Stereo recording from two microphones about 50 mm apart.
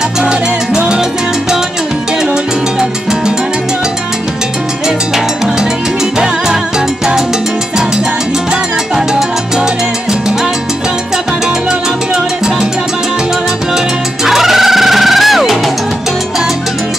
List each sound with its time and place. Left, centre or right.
0.2 s music: centre
2.8 s salsa music: centre
4.8 s music: centre
8.9 s salsa music: centre
14.2 s music: centre